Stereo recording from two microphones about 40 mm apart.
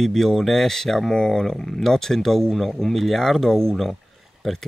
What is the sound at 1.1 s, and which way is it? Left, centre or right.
Speech, centre.